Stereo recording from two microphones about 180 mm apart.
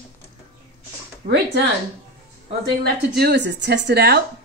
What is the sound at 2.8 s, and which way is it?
A woman's voice, 65° right (ahead or behind).